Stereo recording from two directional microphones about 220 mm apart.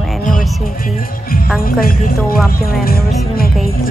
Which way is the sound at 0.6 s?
40° left (ahead or behind).